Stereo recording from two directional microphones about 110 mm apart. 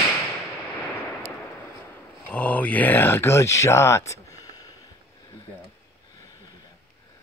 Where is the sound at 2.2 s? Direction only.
15° left (ahead or behind); by 4.6 s 30° left (ahead or behind).